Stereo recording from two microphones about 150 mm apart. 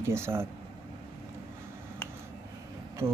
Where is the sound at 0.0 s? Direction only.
15° right (ahead or behind).